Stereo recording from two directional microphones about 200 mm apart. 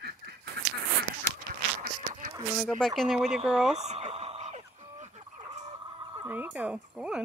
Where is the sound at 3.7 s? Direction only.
35° right (ahead or behind).